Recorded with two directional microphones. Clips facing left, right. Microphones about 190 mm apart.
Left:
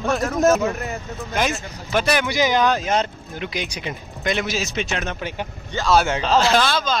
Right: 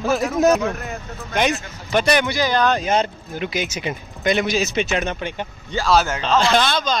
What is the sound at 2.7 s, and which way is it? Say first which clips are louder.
Speech: right 2 dB; centre (ahead or behind).